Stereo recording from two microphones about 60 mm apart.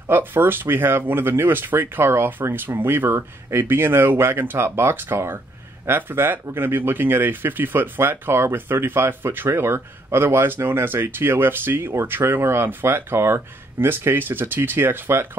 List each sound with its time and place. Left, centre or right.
0.0 s speech: right